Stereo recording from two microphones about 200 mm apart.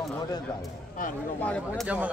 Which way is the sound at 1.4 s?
5° left (ahead or behind).